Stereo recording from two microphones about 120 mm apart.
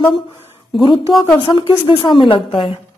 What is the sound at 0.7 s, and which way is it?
A woman's voice, 45° left (ahead or behind).